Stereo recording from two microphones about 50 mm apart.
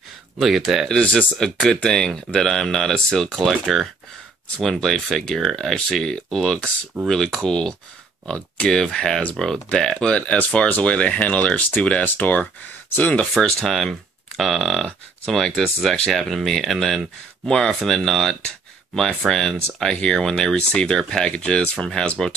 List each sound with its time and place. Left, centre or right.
0.4 s speech: centre
1.4 s speech: centre
12.0 s speech: left
13.4 s speech: centre